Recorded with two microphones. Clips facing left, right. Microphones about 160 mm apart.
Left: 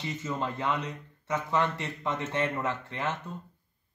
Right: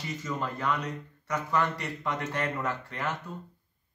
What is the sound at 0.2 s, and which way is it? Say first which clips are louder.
Speech: even; 25° left (ahead or behind).